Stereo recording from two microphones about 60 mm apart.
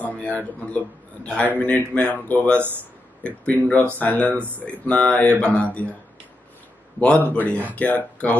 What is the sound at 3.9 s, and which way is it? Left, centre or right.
Speech, left.